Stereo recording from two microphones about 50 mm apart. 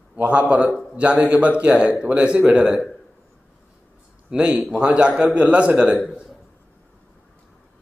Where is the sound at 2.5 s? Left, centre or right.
Centre.